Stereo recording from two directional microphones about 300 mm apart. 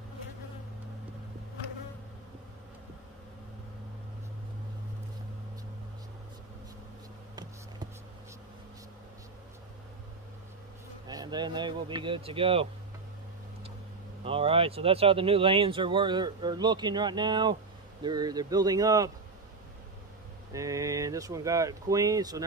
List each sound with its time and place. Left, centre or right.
11.1 s speech: centre
14.2 s speech: centre
20.5 s speech: centre